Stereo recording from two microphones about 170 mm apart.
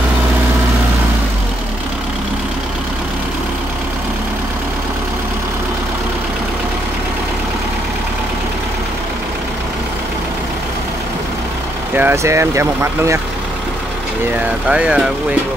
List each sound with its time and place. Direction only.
11.9 s speech: 10° right (ahead or behind)
14.7 s speech: 5° right (ahead or behind)